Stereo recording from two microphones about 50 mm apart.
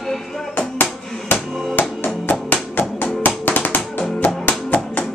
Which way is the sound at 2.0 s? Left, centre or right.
Left.